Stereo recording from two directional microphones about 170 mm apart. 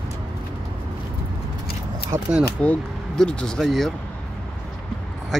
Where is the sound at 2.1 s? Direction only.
35° right (ahead or behind).